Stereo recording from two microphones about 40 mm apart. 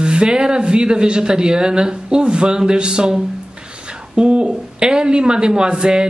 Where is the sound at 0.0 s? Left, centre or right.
Right.